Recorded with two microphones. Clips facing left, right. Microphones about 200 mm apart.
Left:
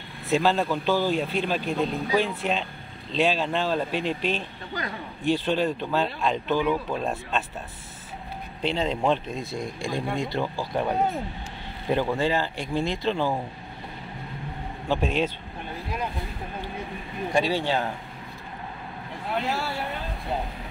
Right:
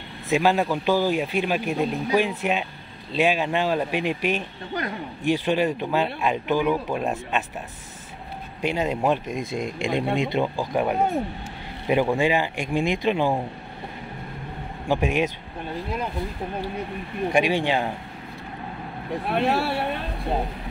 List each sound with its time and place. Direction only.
0.3 s a man's voice: 10° right (ahead or behind)
8.5 s a man's voice: 10° right (ahead or behind)
11.9 s a man's voice: 15° right (ahead or behind)
14.9 s a man's voice: 10° right (ahead or behind)
17.3 s a man's voice: 15° right (ahead or behind)
19.2 s speech: 65° right (ahead or behind)